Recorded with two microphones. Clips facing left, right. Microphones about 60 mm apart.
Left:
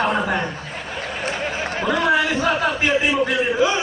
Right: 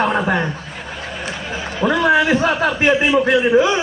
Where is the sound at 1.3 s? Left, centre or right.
Left.